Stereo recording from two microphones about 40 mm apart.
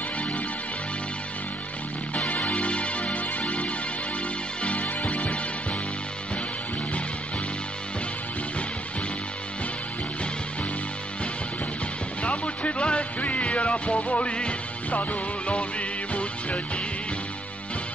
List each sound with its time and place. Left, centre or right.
2.1 s music: left
4.6 s music: left
12.2 s music: left